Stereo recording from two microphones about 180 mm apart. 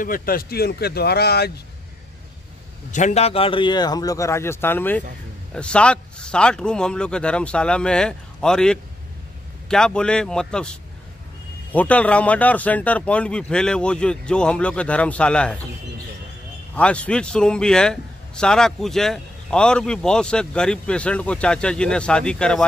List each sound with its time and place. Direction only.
0.0 s speech: 50° left (ahead or behind)
2.9 s a man's voice: 40° left (ahead or behind); by 15.6 s 5° left (ahead or behind)
16.7 s a man's voice: 5° left (ahead or behind)